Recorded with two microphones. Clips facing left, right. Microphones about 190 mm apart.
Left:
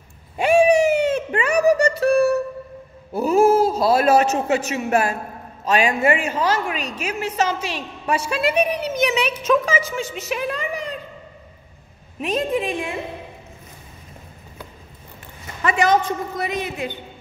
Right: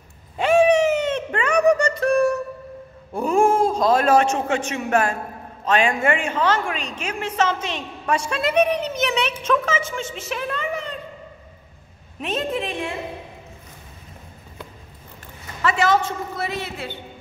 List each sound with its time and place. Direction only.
0.4 s a sound: 10° left (ahead or behind)
3.1 s a man's voice: 5° left (ahead or behind)
10.0 s a woman's voice: 30° right (ahead or behind)
10.3 s a woman's voice: 10° left (ahead or behind)
12.2 s a woman's voice: 10° left (ahead or behind)
15.6 s a woman's voice: 20° left (ahead or behind)